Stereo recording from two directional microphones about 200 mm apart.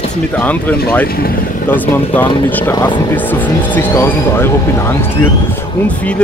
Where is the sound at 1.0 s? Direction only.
50° left (ahead or behind).